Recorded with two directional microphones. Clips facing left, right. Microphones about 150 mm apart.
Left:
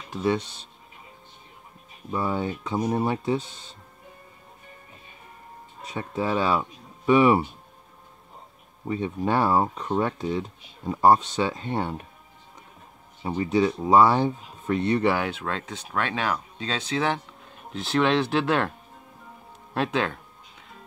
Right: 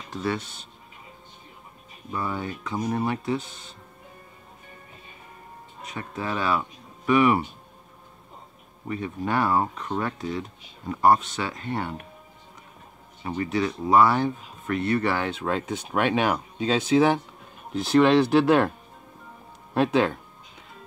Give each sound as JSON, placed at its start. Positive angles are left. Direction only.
{"t": 0.1, "sound": "speech", "side_deg": 15}
{"t": 2.1, "sound": "speech", "side_deg": 25}
{"t": 5.9, "sound": "speech", "side_deg": 25}
{"t": 8.8, "sound": "speech", "side_deg": 20}
{"t": 13.2, "sound": "speech", "side_deg": 20}
{"t": 15.4, "sound": "speech", "side_deg": -10}
{"t": 19.7, "sound": "speech", "side_deg": -5}